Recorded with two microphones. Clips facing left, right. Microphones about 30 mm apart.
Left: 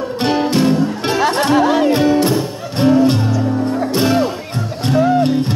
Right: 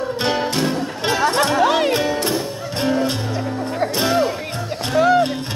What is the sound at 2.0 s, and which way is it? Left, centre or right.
Music, centre.